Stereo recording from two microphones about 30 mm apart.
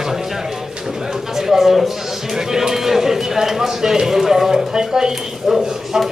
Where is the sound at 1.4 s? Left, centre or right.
Centre.